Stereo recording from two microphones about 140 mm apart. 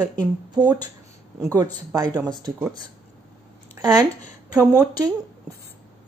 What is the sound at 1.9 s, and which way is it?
Speech, 25° right (ahead or behind).